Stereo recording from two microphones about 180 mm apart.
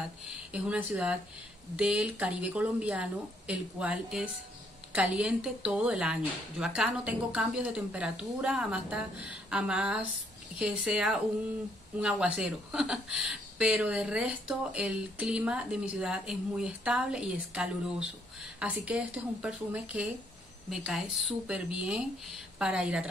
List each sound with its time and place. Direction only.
0.2 s a woman's voice: 5° right (ahead or behind)